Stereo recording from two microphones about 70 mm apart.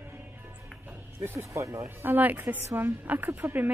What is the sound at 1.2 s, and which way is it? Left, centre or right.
Speech, right.